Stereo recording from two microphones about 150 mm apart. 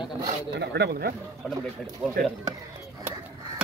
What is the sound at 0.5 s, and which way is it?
Speech, 90° right.